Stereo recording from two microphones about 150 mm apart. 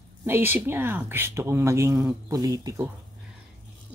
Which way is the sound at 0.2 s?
15° right (ahead or behind).